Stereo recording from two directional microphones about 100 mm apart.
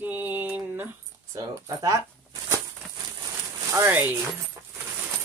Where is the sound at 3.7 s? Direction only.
20° right (ahead or behind).